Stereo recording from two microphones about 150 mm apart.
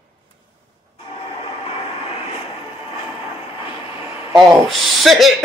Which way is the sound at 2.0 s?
40° left (ahead or behind).